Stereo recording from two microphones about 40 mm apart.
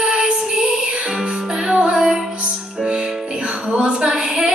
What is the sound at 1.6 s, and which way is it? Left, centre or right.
Music, right.